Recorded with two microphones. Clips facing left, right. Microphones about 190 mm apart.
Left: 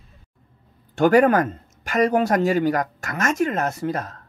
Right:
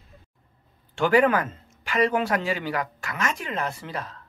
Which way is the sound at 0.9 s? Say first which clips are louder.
Left 5 dB; 45° left (ahead or behind).